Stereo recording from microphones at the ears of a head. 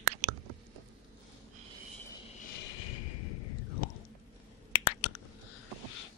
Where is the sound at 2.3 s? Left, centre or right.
Left.